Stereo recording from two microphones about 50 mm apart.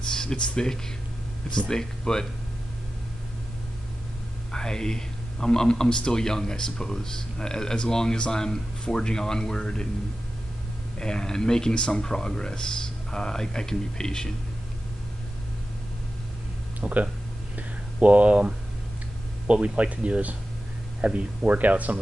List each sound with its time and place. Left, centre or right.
0.1 s speech: centre
4.5 s speech: centre
11.0 s speech: centre
16.8 s speech: right
21.5 s speech: right